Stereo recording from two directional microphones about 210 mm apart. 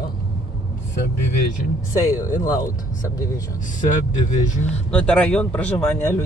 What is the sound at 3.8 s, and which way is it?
Speech, 35° left (ahead or behind).